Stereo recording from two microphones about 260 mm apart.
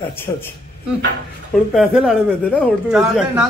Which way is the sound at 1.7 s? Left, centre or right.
Centre.